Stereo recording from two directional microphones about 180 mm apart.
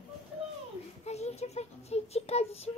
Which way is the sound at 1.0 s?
35° left (ahead or behind).